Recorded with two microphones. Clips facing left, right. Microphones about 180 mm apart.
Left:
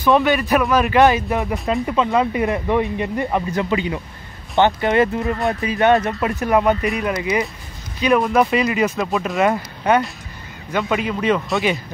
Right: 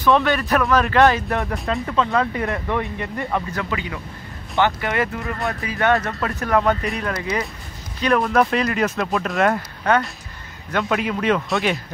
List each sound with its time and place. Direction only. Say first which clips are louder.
0.0 s speech: left 2 dB; 15° left (ahead or behind)
1.3 s speech: left 2 dB; centre (ahead or behind)
1.7 s speech: left 3 dB; 15° left (ahead or behind)
10.7 s speech: left 1 dB; centre (ahead or behind)